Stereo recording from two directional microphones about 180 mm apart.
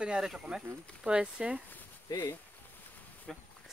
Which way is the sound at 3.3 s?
5° left (ahead or behind).